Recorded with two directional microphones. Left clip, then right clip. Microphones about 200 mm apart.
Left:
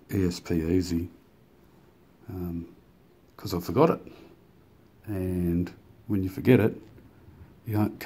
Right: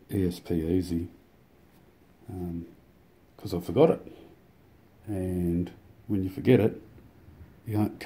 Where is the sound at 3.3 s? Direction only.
5° right (ahead or behind).